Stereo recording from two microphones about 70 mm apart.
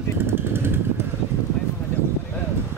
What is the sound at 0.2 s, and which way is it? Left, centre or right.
Vehicle, right.